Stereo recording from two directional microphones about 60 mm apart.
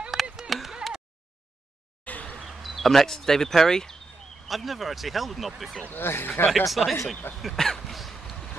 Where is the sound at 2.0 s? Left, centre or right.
Left.